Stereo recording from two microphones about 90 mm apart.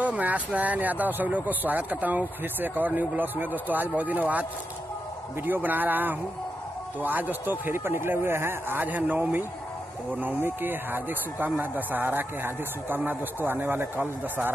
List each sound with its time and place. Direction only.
0.0 s speech: 15° right (ahead or behind)